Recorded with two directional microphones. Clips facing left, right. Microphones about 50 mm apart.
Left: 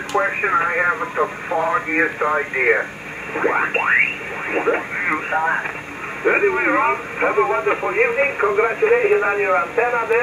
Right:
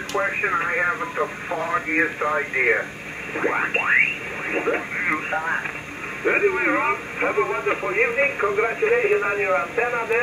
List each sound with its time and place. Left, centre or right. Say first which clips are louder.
0.1 s speech: left 4 dB; centre